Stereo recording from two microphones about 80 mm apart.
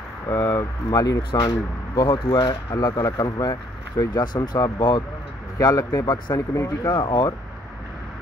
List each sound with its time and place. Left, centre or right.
0.3 s speech: left
1.3 s speech: left
2.7 s speech: left
5.6 s speech: left
6.3 s speech: left
6.9 s speech: left